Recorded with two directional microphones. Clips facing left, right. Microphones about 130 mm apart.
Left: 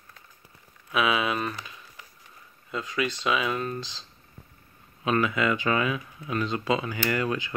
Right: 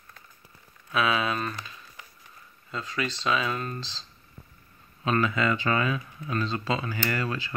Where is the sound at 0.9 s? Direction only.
15° left (ahead or behind).